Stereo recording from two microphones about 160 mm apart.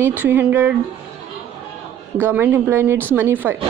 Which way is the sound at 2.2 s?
15° right (ahead or behind).